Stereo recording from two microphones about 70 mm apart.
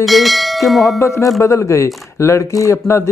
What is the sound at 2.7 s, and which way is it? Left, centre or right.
Speech, left.